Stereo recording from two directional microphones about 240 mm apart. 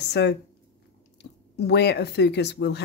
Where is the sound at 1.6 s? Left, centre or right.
Left.